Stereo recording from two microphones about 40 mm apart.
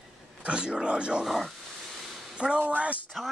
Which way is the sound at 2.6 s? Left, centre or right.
Right.